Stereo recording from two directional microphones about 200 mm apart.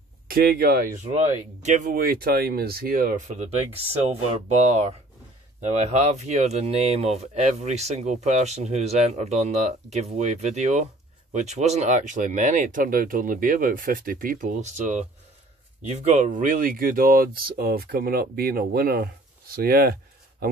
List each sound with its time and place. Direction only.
0.3 s speech: 50° right (ahead or behind)